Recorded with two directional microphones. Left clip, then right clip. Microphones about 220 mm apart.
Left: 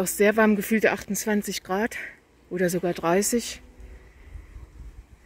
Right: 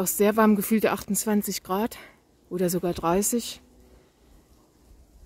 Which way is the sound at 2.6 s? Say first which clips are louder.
Left 1 dB; 15° right (ahead or behind).